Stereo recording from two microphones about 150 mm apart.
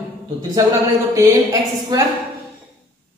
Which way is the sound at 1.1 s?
25° right (ahead or behind).